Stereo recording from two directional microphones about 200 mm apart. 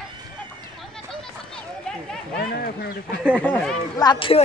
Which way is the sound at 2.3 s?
50° left (ahead or behind).